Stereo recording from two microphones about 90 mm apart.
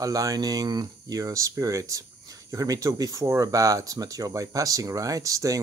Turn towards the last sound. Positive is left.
turn(degrees=-40)  # may be behind; listen again after turning